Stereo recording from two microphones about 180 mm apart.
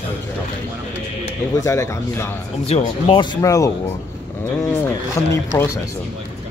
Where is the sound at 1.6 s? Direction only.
15° left (ahead or behind).